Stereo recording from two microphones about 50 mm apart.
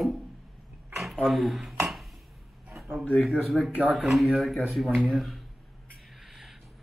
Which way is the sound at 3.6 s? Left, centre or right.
Centre.